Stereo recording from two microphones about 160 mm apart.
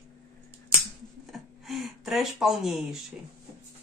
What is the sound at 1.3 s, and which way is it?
Speech, centre (ahead or behind).